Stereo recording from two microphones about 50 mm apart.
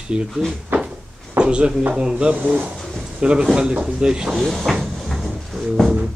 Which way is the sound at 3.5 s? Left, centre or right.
Centre.